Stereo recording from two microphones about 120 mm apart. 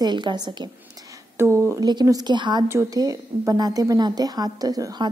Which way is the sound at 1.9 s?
35° right (ahead or behind).